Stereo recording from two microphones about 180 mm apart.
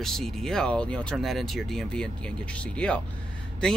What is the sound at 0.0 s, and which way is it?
Speech, centre (ahead or behind).